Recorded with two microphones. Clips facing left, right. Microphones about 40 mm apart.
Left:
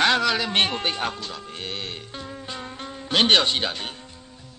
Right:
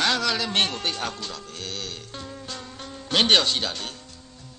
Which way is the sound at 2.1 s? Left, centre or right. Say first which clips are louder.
Left 2 dB; centre.